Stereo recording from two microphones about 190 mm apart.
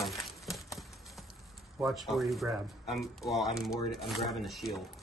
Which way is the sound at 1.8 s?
Centre (ahead or behind).